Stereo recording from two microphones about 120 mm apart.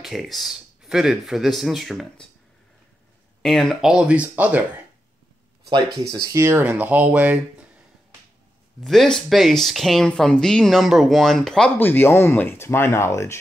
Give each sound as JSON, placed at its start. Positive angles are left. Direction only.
{"t": 0.0, "sound": "speech", "side_deg": 0}
{"t": 3.4, "sound": "speech", "side_deg": 0}
{"t": 6.1, "sound": "speech", "side_deg": -25}
{"t": 8.8, "sound": "speech", "side_deg": 0}
{"t": 11.8, "sound": "speech", "side_deg": 15}